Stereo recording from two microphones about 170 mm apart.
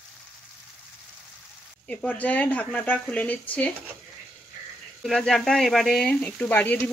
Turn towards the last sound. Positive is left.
turn(degrees=10)  # may be behind; listen again after turning